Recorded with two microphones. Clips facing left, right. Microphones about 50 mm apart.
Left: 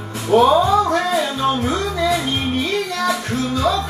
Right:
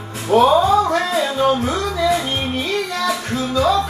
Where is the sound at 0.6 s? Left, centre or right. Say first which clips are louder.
Right 1 dB; right.